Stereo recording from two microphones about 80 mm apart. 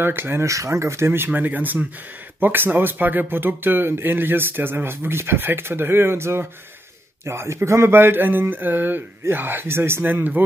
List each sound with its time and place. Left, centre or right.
0.0 s speech: right